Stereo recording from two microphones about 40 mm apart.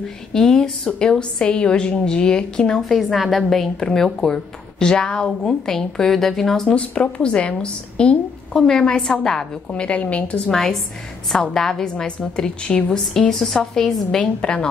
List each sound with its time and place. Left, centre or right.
0.3 s a woman's voice: centre
2.8 s a woman's voice: centre
3.8 s speech: centre
6.7 s a woman's voice: left
8.5 s speech: centre
9.7 s a woman's voice: left
10.5 s a woman's voice: centre
12.9 s speech: centre
14.4 s a woman's voice: left